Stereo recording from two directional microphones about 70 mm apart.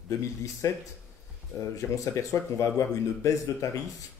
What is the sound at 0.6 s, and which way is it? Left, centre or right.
Speech, left.